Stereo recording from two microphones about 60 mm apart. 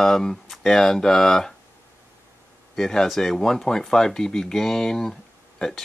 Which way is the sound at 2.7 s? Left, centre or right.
Centre.